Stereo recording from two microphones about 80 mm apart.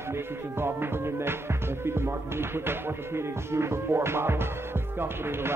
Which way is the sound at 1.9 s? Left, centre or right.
Right.